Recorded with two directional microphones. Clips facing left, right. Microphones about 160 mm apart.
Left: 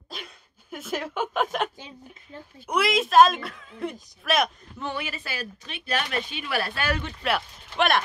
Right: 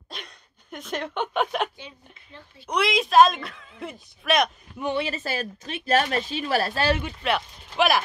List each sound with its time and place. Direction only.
0.1 s a sound: 5° left (ahead or behind)
2.6 s speech: 5° left (ahead or behind)
4.9 s speech: 35° right (ahead or behind)
7.2 s speech: centre (ahead or behind)